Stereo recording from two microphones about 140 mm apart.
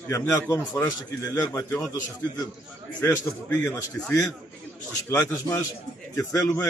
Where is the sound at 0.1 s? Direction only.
20° left (ahead or behind).